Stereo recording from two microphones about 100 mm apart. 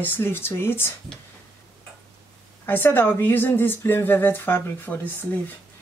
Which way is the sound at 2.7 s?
20° left (ahead or behind).